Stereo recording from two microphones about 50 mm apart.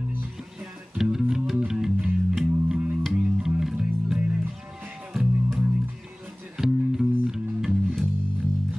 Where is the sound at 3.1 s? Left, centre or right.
Right.